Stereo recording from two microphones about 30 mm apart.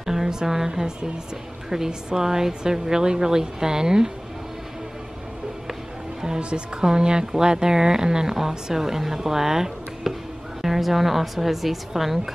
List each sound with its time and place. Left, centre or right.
0.0 s a woman's voice: centre
6.2 s a woman's voice: right; by 12.2 s centre